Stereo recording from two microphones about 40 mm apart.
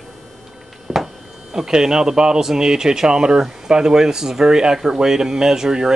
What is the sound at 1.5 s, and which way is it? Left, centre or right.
Speech, centre.